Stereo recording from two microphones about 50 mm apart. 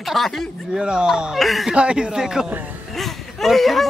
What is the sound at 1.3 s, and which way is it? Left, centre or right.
Speech, centre.